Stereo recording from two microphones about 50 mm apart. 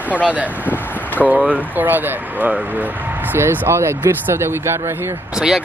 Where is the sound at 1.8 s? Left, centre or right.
Right.